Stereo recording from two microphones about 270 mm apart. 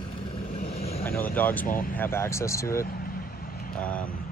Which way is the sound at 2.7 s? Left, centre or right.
Left.